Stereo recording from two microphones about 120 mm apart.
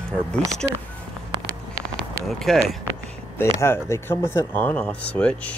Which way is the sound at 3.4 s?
20° left (ahead or behind).